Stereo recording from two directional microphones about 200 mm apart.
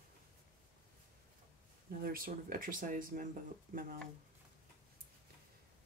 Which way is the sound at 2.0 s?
45° right (ahead or behind).